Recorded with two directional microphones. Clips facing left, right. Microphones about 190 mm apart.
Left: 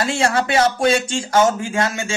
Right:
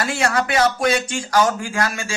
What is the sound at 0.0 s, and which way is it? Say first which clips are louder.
Speech: left 2 dB; 25° left (ahead or behind).